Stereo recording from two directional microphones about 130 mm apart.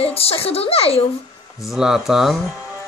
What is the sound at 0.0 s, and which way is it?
A child's voice, 50° left (ahead or behind).